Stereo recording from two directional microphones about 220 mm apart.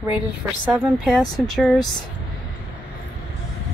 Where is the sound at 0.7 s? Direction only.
Centre (ahead or behind).